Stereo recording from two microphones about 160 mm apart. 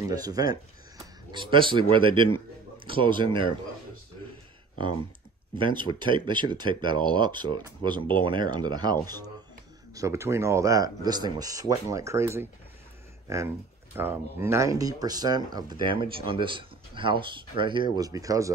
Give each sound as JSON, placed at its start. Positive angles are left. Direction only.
{"t": 0.1, "sound": "a man's voice", "side_deg": -25}
{"t": 5.6, "sound": "speech", "side_deg": -30}
{"t": 9.9, "sound": "speech", "side_deg": -20}